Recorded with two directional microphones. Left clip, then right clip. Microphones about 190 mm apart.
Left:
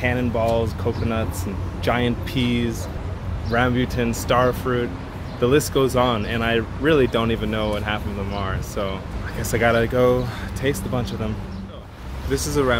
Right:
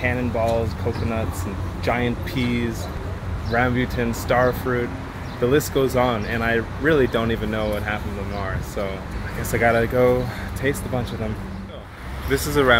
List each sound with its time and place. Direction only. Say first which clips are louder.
0.0 s speech: left 1 dB; 20° left (ahead or behind)
1.9 s speech: left 1 dB; 20° left (ahead or behind)
12.3 s speech: right 3 dB; centre (ahead or behind)